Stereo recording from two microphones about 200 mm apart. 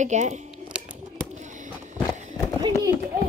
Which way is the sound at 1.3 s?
35° right (ahead or behind).